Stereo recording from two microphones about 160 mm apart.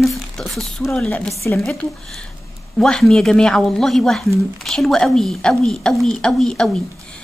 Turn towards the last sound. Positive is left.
turn(degrees=5)  # may be behind; listen again after turning